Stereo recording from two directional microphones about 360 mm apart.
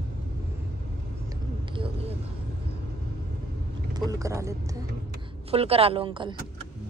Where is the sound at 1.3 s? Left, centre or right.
Centre.